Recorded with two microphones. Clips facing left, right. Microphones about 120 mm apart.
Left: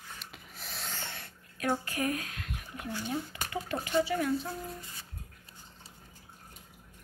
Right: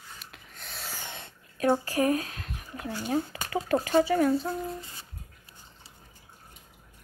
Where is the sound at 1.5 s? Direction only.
35° right (ahead or behind).